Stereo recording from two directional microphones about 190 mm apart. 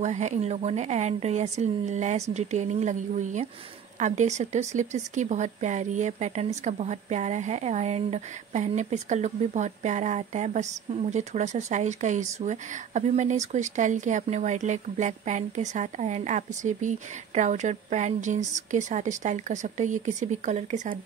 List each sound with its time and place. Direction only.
0.0 s speech: 40° right (ahead or behind)